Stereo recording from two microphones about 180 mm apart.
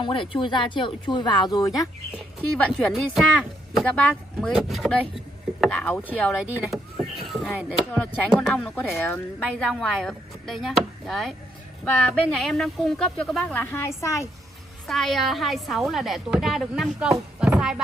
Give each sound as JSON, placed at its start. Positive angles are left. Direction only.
{"t": 0.0, "sound": "speech", "side_deg": 30}
{"t": 2.5, "sound": "speech", "side_deg": 5}
{"t": 14.9, "sound": "speech", "side_deg": 0}
{"t": 17.4, "sound": "music", "side_deg": -5}